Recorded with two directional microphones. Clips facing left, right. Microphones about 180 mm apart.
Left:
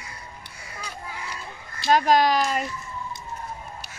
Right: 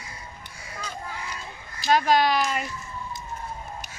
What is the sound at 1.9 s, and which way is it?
Speech, 40° left (ahead or behind).